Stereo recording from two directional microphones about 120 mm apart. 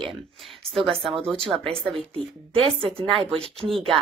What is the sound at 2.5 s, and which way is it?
Speech, 50° right (ahead or behind).